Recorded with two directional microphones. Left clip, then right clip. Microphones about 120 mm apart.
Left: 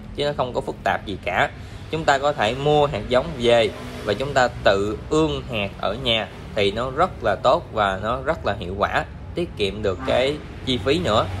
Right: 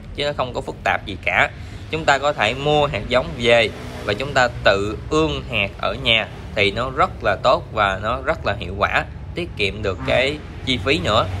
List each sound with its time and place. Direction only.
0.2 s a man's voice: 25° left (ahead or behind)